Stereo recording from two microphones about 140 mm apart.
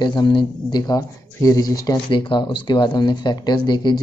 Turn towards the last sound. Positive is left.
turn(degrees=30)  # may be behind; listen again after turning